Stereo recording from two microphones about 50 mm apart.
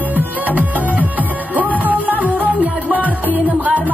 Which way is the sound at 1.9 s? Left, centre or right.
Left.